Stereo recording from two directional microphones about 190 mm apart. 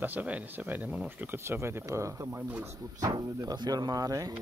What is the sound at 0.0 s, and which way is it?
Speech, 10° right (ahead or behind).